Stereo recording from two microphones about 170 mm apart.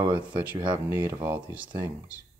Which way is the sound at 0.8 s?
10° right (ahead or behind).